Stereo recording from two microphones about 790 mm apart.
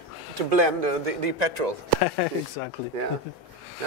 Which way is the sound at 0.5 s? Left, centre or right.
Right.